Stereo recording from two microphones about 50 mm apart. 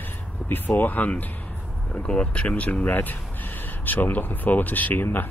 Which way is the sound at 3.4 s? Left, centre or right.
Left.